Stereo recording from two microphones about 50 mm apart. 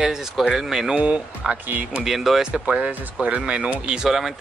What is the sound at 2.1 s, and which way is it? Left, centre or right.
Speech, centre.